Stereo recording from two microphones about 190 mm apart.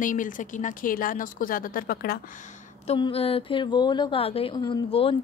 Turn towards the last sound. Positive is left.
turn(degrees=25)  # may be behind; listen again after turning